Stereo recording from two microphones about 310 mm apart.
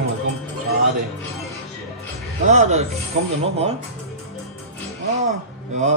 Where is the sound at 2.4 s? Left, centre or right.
Right.